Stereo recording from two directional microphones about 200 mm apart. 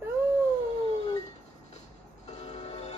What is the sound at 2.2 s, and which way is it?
Music, 35° left (ahead or behind).